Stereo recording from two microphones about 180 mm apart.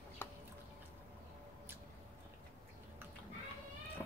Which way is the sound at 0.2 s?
10° left (ahead or behind).